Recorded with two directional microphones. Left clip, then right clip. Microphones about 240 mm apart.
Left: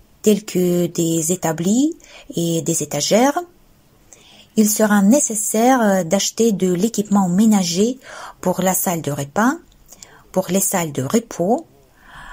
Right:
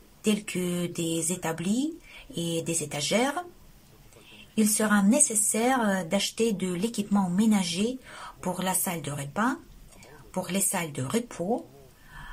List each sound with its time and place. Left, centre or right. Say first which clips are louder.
0.2 s speech: left 12 dB; left
4.6 s speech: left 9 dB; left